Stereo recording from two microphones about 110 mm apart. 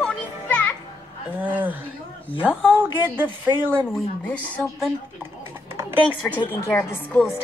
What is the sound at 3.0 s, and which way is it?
Speech, 20° right (ahead or behind).